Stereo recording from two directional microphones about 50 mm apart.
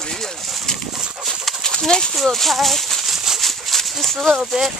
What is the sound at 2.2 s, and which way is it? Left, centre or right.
Speech, centre.